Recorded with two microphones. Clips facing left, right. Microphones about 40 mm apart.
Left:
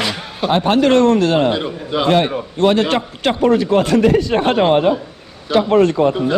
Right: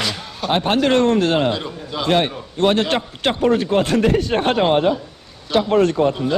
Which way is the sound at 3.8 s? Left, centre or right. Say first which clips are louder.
Left 4 dB; left.